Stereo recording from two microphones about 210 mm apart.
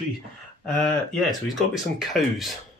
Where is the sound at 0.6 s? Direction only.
Centre (ahead or behind).